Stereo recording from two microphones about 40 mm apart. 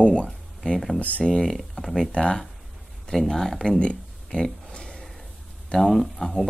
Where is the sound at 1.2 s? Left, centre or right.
Centre.